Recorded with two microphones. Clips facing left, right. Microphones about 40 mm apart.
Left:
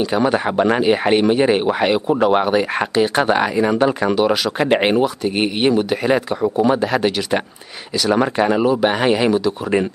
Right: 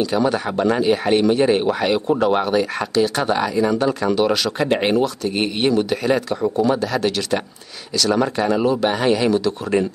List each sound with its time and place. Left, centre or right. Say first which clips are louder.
0.1 s speech: left 2 dB; left
2.8 s speech: left 2 dB; left
4.1 s a man's voice: left 1 dB; centre
4.6 s a man's voice: left 3 dB; left